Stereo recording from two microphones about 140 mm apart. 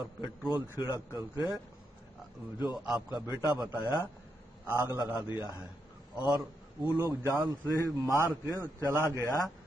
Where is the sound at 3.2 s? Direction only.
20° right (ahead or behind).